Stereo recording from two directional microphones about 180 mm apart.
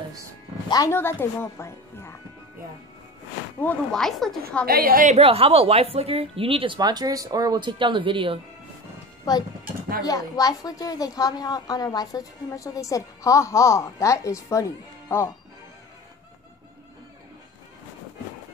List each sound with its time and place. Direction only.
0.7 s speech: 20° left (ahead or behind)
3.6 s speech: 5° left (ahead or behind)
4.6 s a woman's voice: 55° right (ahead or behind)
5.1 s a woman's voice: 35° right (ahead or behind)
10.0 s a woman's voice: 20° left (ahead or behind)